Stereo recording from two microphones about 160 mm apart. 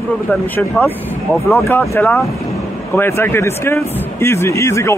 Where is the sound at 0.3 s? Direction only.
10° left (ahead or behind).